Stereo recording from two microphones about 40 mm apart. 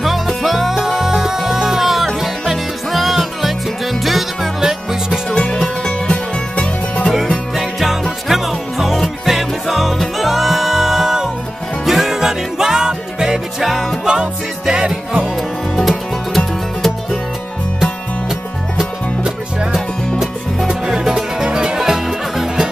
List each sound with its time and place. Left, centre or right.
0.0 s music: centre
4.6 s music: centre
5.3 s music: left
7.5 s music: centre
14.0 s music: centre
15.7 s music: centre
20.6 s music: centre